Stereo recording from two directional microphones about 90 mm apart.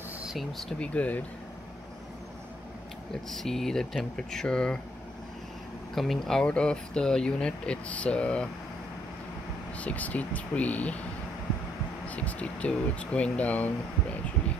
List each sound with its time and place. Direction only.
0.2 s speech: centre (ahead or behind)
0.7 s speech: 15° left (ahead or behind)
3.3 s speech: 5° left (ahead or behind)
5.9 s speech: 5° left (ahead or behind)
9.8 s speech: 15° left (ahead or behind)
12.1 s speech: 15° left (ahead or behind)